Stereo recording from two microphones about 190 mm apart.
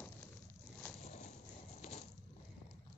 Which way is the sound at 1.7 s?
35° left (ahead or behind).